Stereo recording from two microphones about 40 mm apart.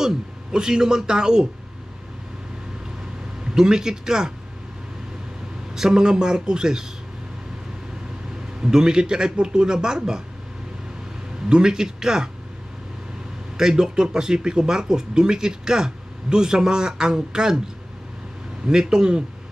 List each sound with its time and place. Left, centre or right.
0.0 s speech: centre
3.5 s speech: centre
5.8 s speech: centre
8.6 s speech: centre
11.4 s speech: centre
13.6 s speech: centre
18.7 s speech: centre